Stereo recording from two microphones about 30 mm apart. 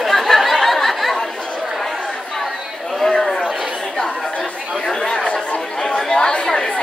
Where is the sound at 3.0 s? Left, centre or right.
Centre.